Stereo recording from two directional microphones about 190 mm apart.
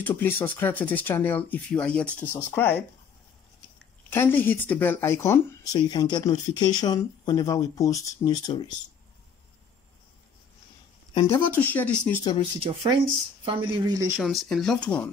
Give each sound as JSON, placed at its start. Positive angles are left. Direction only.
{"t": 0.0, "sound": "speech", "side_deg": 10}
{"t": 4.1, "sound": "speech", "side_deg": 10}
{"t": 11.1, "sound": "speech", "side_deg": 15}
{"t": 12.6, "sound": "speech", "side_deg": -30}
{"t": 14.1, "sound": "speech", "side_deg": 0}